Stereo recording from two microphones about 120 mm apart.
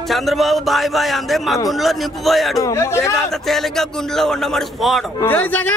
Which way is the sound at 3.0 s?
Centre (ahead or behind).